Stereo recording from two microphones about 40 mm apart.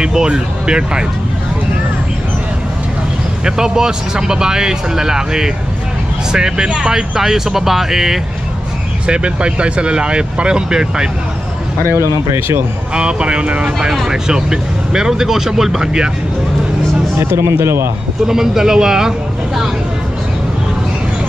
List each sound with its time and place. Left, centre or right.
0.0 s speech: centre
3.4 s speech: centre
9.0 s speech: right
11.9 s speech: right
12.9 s speech: right
13.7 s speech: centre
17.2 s speech: right
18.2 s speech: centre